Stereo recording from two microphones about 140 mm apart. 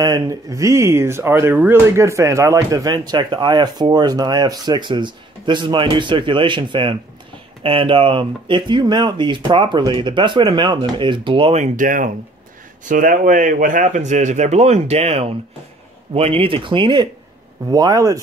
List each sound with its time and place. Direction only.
0.0 s speech: 25° right (ahead or behind)